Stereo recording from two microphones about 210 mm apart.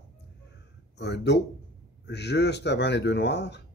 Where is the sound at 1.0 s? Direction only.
55° left (ahead or behind).